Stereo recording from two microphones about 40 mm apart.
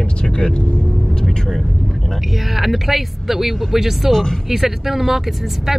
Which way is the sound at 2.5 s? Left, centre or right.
Centre.